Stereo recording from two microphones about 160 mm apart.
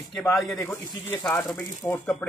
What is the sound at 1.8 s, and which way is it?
Speech, 20° left (ahead or behind).